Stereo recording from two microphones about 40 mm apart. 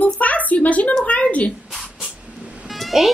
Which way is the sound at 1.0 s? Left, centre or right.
Left.